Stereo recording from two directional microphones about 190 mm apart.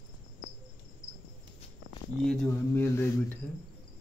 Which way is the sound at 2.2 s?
10° left (ahead or behind).